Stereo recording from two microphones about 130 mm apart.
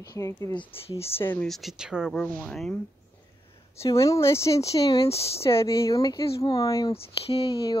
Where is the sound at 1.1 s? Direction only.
15° left (ahead or behind).